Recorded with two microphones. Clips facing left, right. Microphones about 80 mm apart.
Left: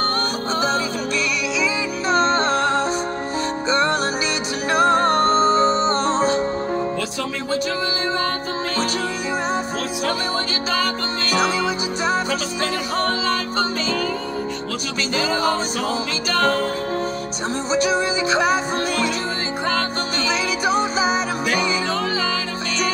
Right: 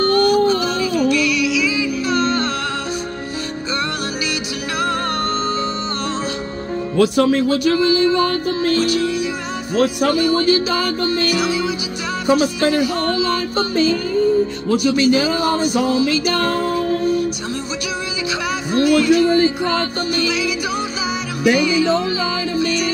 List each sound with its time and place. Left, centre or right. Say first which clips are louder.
0.0 s music: right 9 dB; left
4.7 s music: left 5 dB; left
7.0 s speech: right 12 dB; right
7.7 s music: right 8 dB; left
10.0 s music: right 7 dB; left
15.0 s music: right 5 dB; left
18.3 s music: even; left
21.5 s music: right 5 dB; left